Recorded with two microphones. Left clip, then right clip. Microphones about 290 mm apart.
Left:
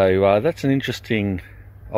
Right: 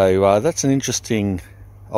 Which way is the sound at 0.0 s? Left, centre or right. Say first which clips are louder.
Right 1 dB; centre.